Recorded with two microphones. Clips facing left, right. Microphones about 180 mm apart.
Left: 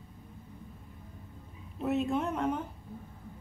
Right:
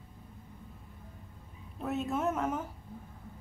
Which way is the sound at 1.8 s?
Centre (ahead or behind).